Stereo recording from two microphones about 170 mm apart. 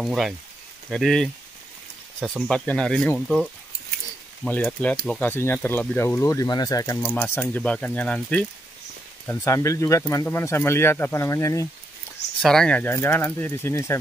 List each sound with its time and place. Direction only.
0.0 s speech: centre (ahead or behind)
2.4 s speech: 5° left (ahead or behind)
4.5 s speech: 5° left (ahead or behind)
12.4 s speech: 5° left (ahead or behind)